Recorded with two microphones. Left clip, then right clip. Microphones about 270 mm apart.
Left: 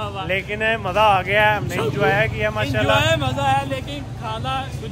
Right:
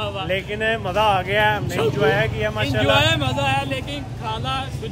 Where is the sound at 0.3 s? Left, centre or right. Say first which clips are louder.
Left 2 dB; centre.